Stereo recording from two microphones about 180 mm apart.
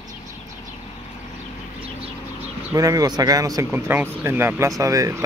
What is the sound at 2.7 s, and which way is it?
Speech, 20° right (ahead or behind).